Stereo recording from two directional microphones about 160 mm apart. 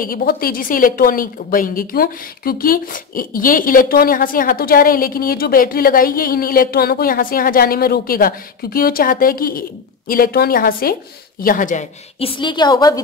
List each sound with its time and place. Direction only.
0.0 s a woman's voice: 65° left (ahead or behind)
12.2 s a woman's voice: 30° left (ahead or behind)